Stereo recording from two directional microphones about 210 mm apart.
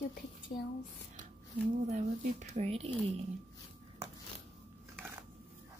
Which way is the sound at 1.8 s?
35° right (ahead or behind).